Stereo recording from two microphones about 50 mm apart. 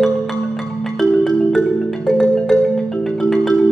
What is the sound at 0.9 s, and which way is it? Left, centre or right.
Marimba, centre.